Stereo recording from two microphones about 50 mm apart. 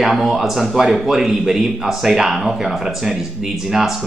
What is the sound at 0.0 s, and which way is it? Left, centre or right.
A man's voice, centre.